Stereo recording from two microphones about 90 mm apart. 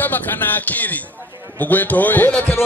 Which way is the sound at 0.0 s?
20° left (ahead or behind).